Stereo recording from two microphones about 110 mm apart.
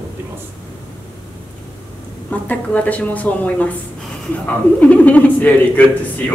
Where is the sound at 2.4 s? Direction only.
15° left (ahead or behind).